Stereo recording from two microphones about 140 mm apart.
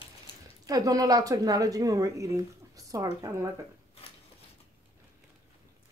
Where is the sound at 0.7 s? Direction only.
25° right (ahead or behind).